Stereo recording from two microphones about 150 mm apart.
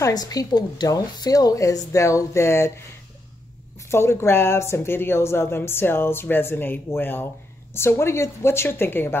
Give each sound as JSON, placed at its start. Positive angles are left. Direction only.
{"t": 0.0, "sound": "a woman's voice", "side_deg": 25}
{"t": 3.9, "sound": "a woman's voice", "side_deg": 15}